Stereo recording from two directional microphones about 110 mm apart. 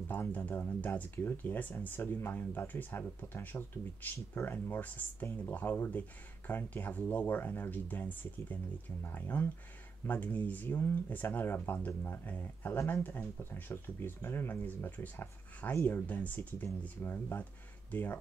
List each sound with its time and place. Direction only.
0.1 s speech: 15° left (ahead or behind)